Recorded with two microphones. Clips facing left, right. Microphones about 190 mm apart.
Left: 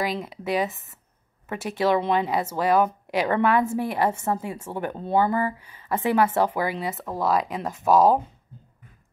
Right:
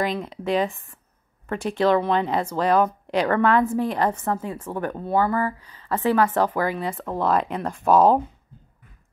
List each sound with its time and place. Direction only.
0.0 s speech: 5° left (ahead or behind)
4.1 s a woman's voice: 25° left (ahead or behind); by 8.2 s centre (ahead or behind)